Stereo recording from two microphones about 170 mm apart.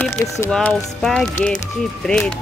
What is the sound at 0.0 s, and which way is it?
Speech, 5° left (ahead or behind).